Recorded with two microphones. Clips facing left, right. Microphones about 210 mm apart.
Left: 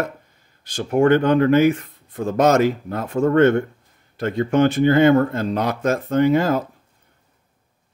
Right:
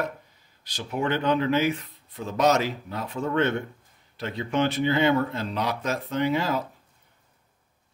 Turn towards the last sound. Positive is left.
turn(degrees=50)  # may be behind; listen again after turning